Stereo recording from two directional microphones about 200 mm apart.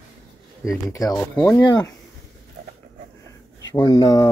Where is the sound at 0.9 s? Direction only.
15° left (ahead or behind).